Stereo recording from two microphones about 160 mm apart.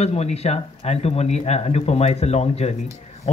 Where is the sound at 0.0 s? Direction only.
40° left (ahead or behind).